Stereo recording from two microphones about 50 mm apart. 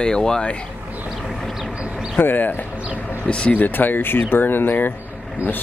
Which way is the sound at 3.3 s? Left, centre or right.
Left.